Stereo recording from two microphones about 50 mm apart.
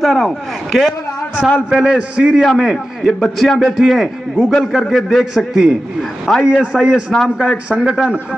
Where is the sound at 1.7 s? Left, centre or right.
Centre.